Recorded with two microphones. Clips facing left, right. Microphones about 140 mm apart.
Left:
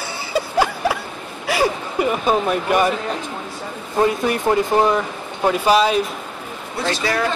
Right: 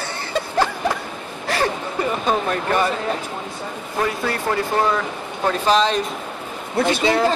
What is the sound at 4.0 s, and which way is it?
Speech, 20° left (ahead or behind).